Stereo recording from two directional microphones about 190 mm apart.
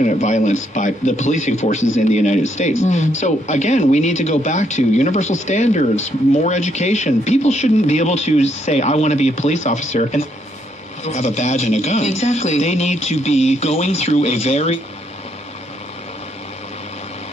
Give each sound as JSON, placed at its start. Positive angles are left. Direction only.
{"t": 0.0, "sound": "a man's voice", "side_deg": 40}